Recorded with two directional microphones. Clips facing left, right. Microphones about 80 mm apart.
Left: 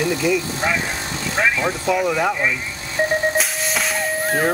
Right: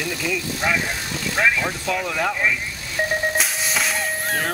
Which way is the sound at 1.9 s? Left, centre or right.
Centre.